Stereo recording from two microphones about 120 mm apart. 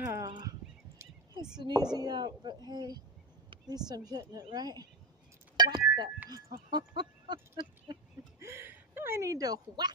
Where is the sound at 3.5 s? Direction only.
35° right (ahead or behind).